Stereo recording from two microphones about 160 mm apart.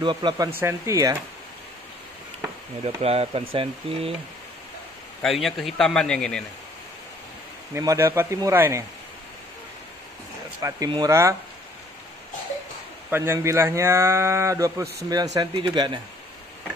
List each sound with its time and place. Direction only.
0.0 s speech: 30° right (ahead or behind)
0.6 s speech: 15° right (ahead or behind)
3.0 s speech: 40° right (ahead or behind)
5.2 s a man's voice: centre (ahead or behind)
7.7 s speech: 20° right (ahead or behind)
10.6 s speech: 25° right (ahead or behind)
13.1 s speech: 15° right (ahead or behind)